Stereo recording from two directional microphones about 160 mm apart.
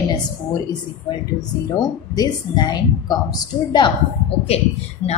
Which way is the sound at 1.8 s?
25° left (ahead or behind).